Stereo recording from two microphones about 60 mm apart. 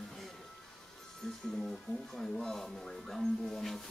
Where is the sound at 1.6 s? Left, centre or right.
Centre.